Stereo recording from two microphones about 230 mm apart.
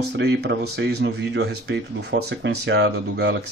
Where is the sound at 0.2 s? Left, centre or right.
Right.